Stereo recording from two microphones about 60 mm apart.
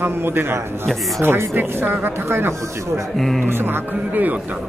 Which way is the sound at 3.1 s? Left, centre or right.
Centre.